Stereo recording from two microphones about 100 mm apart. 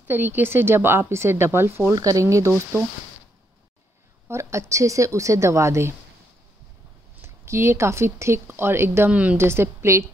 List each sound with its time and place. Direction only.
0.0 s speech: 20° right (ahead or behind)
2.0 s a woman's voice: 35° right (ahead or behind)
4.3 s a woman's voice: 30° right (ahead or behind)
7.2 s speech: 25° right (ahead or behind)
9.4 s speech: 25° right (ahead or behind)